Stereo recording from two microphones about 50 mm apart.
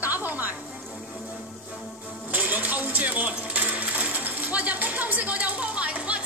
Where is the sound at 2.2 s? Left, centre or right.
Right.